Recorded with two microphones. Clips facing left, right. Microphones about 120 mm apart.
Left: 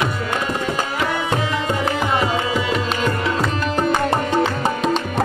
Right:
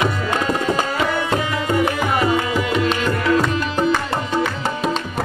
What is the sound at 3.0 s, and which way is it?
Tabla, 40° left (ahead or behind).